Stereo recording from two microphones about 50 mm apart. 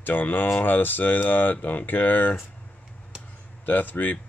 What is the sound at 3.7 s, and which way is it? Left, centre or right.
Speech, left.